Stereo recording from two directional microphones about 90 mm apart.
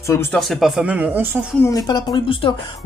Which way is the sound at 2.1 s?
80° left.